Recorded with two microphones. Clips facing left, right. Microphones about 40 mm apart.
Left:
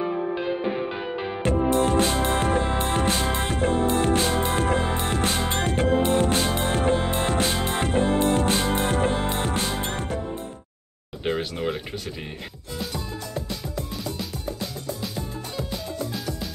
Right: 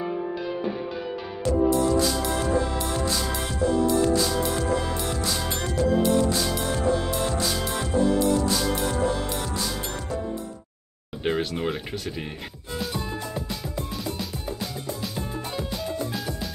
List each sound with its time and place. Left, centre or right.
1.4 s music: left
11.2 s music: centre
13.5 s music: centre